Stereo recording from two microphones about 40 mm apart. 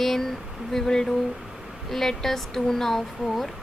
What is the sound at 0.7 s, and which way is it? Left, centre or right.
Speech, centre.